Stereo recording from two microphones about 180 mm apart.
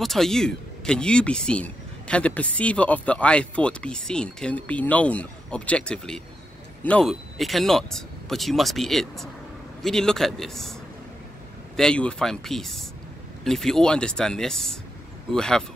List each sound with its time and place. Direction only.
0.0 s a man's voice: centre (ahead or behind)